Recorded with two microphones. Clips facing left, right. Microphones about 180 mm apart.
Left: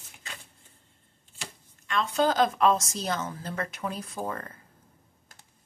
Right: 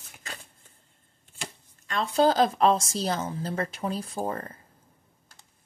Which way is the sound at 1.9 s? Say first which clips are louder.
Right 3 dB; 35° right (ahead or behind).